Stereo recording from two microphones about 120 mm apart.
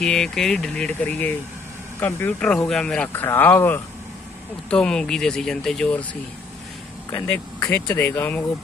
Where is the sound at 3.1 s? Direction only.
15° left (ahead or behind).